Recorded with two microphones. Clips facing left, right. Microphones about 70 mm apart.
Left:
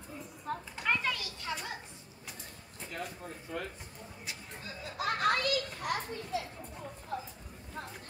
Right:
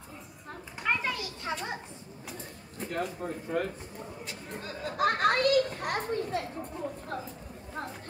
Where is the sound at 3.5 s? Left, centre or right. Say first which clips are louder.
Right 8 dB; right.